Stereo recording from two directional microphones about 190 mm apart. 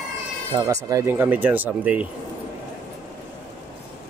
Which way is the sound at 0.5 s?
15° right (ahead or behind).